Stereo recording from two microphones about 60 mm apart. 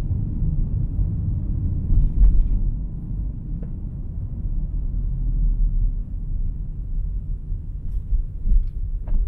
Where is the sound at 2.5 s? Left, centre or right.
Centre.